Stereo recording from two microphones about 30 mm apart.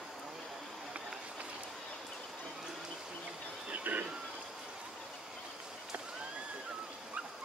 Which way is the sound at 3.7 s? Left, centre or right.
Right.